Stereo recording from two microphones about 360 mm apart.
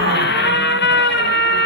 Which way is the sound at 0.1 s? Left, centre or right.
Left.